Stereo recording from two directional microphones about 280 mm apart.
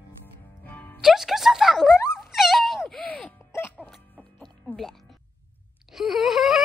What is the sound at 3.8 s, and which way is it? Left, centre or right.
Music, centre.